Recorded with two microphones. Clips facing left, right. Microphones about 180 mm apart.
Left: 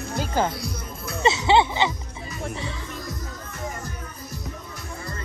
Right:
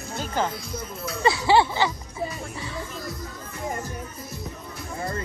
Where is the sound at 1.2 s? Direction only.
20° left (ahead or behind).